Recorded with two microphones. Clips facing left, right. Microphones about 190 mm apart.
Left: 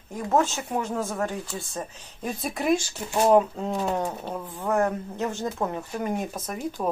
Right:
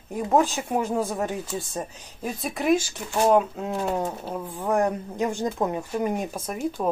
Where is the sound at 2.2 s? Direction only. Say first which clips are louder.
Right 1 dB; centre (ahead or behind).